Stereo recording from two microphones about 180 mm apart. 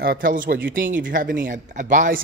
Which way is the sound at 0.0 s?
55° right (ahead or behind).